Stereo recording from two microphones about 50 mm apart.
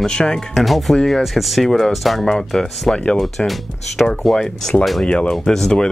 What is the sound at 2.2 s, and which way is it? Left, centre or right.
Speech, centre.